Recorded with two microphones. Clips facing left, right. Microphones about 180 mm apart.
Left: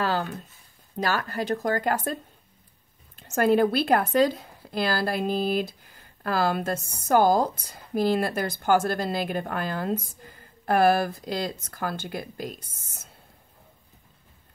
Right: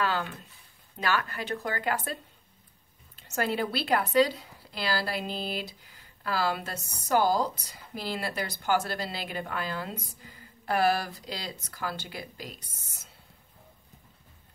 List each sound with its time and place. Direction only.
0.0 s a sound: 40° left (ahead or behind)
0.9 s speech: 40° left (ahead or behind)
3.2 s speech: 50° left (ahead or behind)